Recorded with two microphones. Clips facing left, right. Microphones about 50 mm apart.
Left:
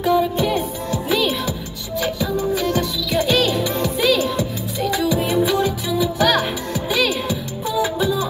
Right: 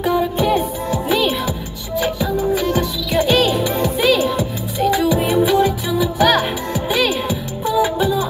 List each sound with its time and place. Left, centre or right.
0.0 s music: centre